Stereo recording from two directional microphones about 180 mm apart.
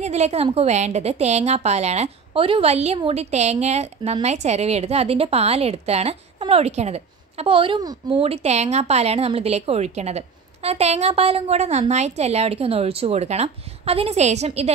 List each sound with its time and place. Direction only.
0.0 s a woman's voice: 35° right (ahead or behind)